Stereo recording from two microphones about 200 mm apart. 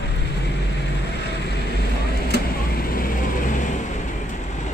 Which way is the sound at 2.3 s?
45° left (ahead or behind).